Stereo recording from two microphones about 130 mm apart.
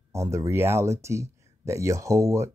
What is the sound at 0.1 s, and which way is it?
Speech, 25° right (ahead or behind).